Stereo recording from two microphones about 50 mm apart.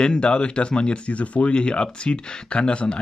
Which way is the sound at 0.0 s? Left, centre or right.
Centre.